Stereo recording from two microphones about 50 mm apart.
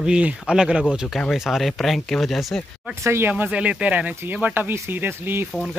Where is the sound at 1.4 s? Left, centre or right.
Centre.